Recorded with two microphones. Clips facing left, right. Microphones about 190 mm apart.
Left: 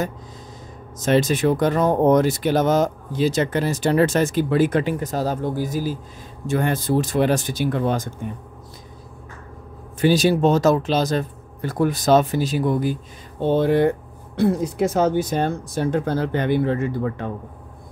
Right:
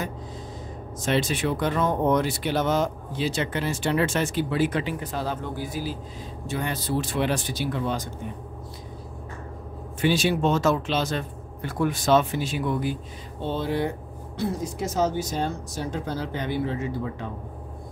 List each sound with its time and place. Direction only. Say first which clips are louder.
0.9 s speech: left 6 dB; 45° left (ahead or behind)
9.9 s speech: left 6 dB; 40° left (ahead or behind)
13.4 s speech: left 9 dB; 55° left (ahead or behind)